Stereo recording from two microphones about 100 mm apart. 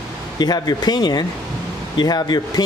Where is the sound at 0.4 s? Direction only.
45° left (ahead or behind).